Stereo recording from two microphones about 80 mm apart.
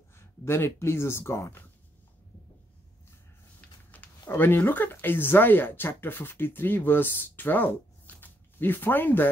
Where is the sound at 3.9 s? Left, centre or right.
Centre.